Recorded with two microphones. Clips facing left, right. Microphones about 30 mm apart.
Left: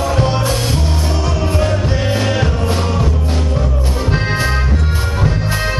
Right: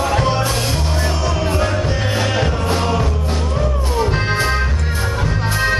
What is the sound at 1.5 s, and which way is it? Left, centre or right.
Music, centre.